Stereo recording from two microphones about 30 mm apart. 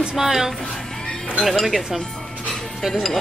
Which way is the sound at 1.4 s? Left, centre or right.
Centre.